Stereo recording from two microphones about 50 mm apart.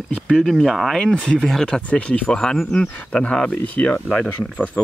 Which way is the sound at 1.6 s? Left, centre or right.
Left.